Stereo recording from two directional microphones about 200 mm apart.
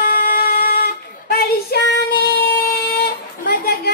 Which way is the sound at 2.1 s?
50° left (ahead or behind).